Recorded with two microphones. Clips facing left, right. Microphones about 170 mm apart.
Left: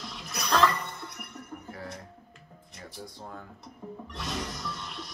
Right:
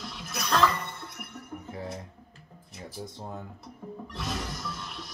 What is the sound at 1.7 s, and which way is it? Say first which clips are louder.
Music: right 5 dB; 20° right (ahead or behind).